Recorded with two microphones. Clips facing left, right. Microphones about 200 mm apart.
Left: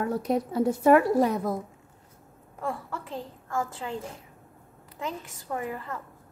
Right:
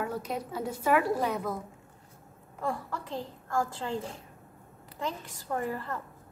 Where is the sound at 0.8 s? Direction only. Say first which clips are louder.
Left 6 dB; 45° left (ahead or behind).